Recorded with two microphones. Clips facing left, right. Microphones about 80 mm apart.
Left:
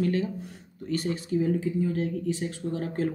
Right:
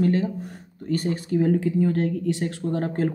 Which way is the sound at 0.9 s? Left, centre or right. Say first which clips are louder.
Right 4 dB; right.